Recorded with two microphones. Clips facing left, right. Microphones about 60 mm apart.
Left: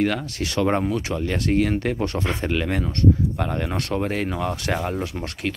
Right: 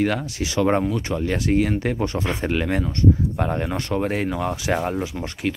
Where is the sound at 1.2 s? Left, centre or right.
Centre.